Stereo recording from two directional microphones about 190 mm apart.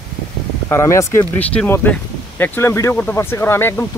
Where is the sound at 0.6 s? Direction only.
15° left (ahead or behind).